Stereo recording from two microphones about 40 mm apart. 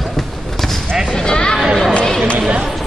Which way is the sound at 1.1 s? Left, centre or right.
Centre.